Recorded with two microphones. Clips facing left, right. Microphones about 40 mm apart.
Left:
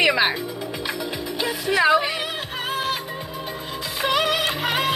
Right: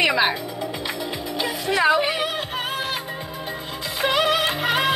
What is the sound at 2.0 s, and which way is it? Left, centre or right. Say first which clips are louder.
Speech: right 1 dB; right.